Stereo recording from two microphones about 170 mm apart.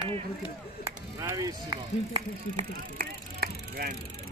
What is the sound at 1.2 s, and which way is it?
Speech, 20° right (ahead or behind).